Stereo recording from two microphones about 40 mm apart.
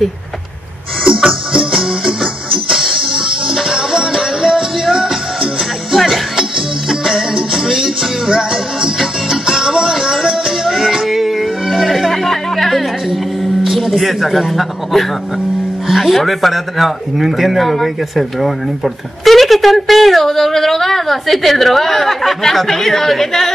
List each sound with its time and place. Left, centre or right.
1.0 s music: right
2.7 s music: centre
5.9 s music: centre
6.9 s music: centre
13.7 s a woman's voice: centre